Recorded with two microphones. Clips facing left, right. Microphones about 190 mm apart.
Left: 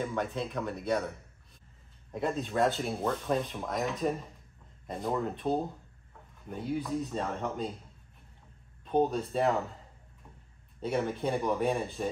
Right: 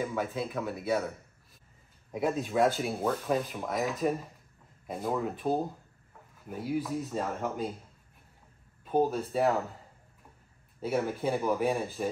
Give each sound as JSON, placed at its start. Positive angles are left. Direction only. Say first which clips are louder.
{"t": 0.0, "sound": "speech", "louder": "right 1 dB", "side_deg": -5}
{"t": 2.1, "sound": "speech", "louder": "right 2 dB", "side_deg": -5}
{"t": 8.8, "sound": "speech", "louder": "even", "side_deg": -5}
{"t": 10.8, "sound": "speech", "louder": "right 1 dB", "side_deg": -5}